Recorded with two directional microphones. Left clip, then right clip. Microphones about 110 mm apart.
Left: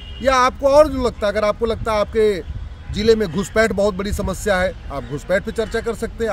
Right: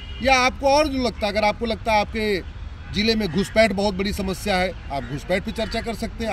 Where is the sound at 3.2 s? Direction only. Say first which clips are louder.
Left 1 dB; 45° left (ahead or behind).